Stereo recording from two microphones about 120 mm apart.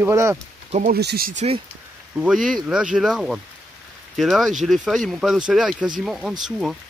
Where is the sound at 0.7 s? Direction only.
75° right (ahead or behind).